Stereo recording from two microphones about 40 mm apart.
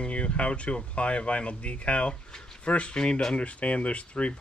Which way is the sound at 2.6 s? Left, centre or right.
Left.